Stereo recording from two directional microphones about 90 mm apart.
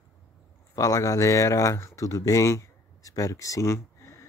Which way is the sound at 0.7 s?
35° left (ahead or behind).